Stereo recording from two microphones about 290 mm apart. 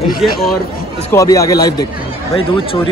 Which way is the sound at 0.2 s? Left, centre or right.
Centre.